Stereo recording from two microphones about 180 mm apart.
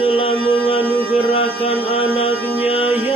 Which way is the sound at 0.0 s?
30° left (ahead or behind).